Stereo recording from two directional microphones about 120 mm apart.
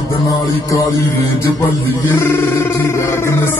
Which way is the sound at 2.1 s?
20° left (ahead or behind).